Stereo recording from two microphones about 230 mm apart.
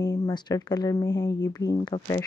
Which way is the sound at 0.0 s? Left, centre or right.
Centre.